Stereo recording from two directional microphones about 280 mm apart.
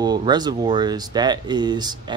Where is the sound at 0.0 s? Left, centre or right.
Centre.